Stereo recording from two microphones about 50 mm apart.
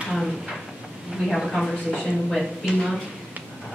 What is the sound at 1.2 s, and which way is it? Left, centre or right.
Speech, centre.